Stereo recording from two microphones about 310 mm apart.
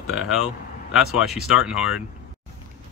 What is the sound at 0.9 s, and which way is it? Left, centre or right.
Speech, centre.